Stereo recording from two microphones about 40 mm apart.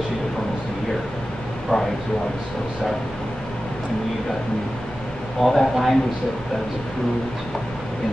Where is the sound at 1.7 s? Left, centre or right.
Left.